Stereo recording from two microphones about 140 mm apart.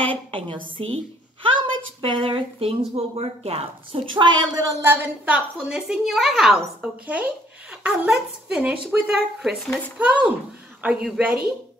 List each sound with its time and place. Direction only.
0.0 s a woman's voice: 40° right (ahead or behind)
4.8 s a woman's voice: 10° right (ahead or behind)